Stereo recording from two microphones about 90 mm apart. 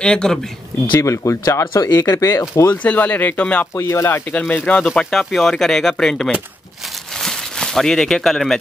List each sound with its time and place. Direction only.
0.0 s speech: 10° left (ahead or behind)
1.0 s speech: 30° left (ahead or behind)
2.7 s speech: 15° left (ahead or behind)
3.7 s speech: 30° left (ahead or behind)
4.3 s speech: 20° left (ahead or behind)
4.9 s speech: 5° left (ahead or behind)
7.2 s a sound: 5° left (ahead or behind)